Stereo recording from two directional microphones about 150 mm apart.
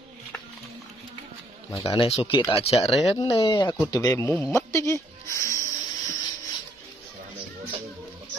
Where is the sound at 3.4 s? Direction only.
25° left (ahead or behind).